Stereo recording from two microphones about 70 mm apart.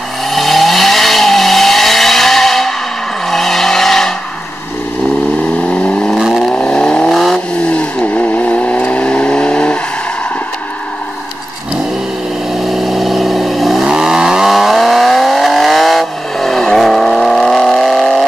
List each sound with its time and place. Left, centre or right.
0.3 s vehicle: centre
5.7 s vehicle: centre
6.1 s vehicle: centre
6.5 s vehicle: centre
12.5 s vehicle: centre